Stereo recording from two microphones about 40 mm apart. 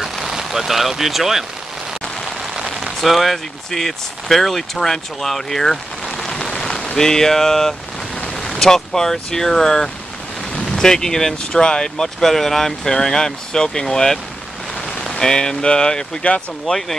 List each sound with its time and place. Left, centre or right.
0.0 s vehicle: centre
3.0 s speech: centre
6.1 s rain: centre
8.4 s speech: centre